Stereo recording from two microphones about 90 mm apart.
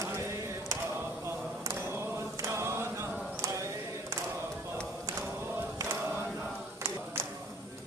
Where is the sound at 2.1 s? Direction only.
30° right (ahead or behind).